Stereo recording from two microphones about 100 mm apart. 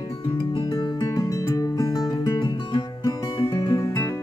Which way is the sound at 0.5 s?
45° left (ahead or behind).